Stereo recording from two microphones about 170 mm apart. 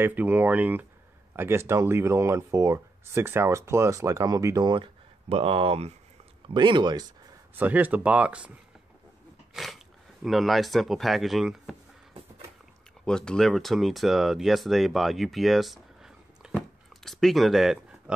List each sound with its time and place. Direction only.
0.0 s speech: 10° right (ahead or behind)
7.5 s speech: 10° right (ahead or behind)
9.5 s a sound: centre (ahead or behind)
10.2 s speech: centre (ahead or behind)
13.0 s speech: 5° left (ahead or behind)